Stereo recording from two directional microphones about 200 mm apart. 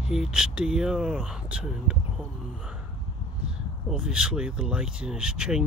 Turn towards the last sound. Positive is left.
turn(degrees=-5)  # may be behind; listen again after turning